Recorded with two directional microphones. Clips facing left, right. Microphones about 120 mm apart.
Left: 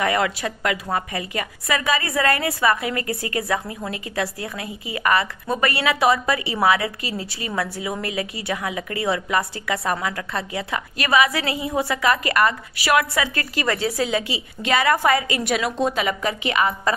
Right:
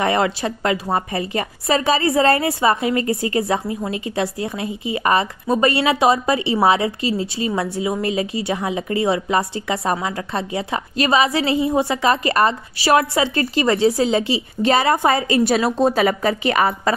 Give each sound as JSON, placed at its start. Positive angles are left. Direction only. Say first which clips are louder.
{"t": 0.0, "sound": "a woman's voice", "louder": "right 3 dB", "side_deg": -30}